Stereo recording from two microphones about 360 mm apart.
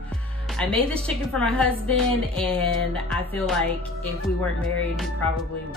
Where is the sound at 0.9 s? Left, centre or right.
Centre.